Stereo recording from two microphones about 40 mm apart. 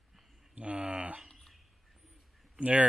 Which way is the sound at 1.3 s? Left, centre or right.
Centre.